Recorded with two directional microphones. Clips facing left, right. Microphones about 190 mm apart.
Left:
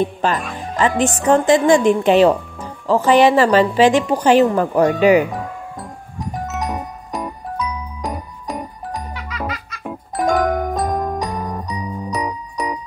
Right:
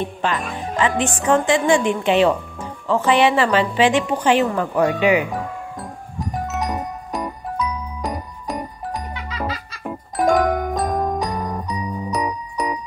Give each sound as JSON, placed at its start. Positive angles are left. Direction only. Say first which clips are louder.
{"t": 0.0, "sound": "speech", "louder": "left 4 dB", "side_deg": 40}
{"t": 5.3, "sound": "music", "louder": "even", "side_deg": 0}